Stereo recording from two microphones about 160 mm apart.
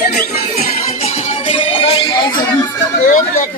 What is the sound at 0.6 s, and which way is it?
Music, 40° left (ahead or behind).